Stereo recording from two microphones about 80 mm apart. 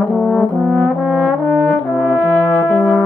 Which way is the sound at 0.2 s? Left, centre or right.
Centre.